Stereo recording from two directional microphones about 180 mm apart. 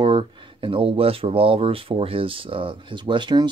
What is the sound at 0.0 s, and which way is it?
Speech, 25° right (ahead or behind).